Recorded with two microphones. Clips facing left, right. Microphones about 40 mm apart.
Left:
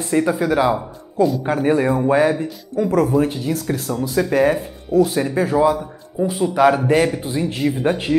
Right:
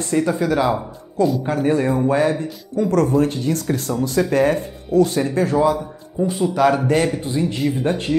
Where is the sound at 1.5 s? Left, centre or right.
Centre.